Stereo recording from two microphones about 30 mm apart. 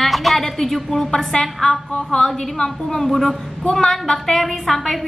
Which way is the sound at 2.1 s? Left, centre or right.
Left.